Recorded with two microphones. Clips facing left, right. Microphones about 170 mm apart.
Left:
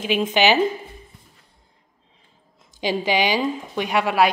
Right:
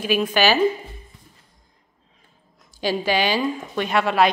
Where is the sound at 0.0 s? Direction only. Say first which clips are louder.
Even; 20° left (ahead or behind).